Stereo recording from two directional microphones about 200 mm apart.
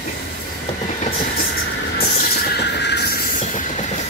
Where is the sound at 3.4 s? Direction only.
40° left (ahead or behind).